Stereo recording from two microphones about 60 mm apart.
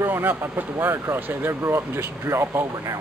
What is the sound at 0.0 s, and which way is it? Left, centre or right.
Speech, right.